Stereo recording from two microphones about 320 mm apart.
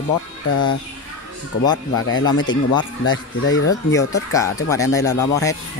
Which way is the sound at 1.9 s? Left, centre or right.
Left.